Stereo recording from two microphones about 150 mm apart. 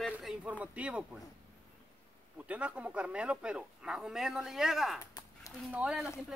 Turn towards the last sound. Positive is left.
turn(degrees=-5)  # may be behind; listen again after turning